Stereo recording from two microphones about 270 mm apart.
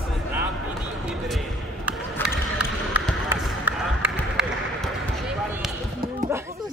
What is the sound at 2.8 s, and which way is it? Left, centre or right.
Basketball bounce, centre.